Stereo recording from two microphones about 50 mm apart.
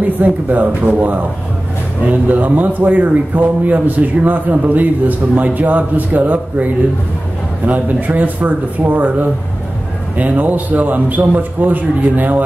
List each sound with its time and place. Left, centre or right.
0.2 s a man's voice: right